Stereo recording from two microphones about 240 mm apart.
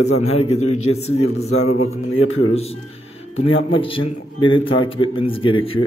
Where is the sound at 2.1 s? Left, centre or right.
Left.